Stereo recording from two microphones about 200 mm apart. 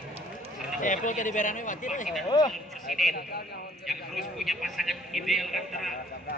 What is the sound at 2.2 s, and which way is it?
Speech, 20° left (ahead or behind).